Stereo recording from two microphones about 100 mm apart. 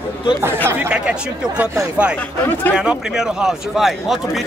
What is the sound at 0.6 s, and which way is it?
Speech, 15° right (ahead or behind).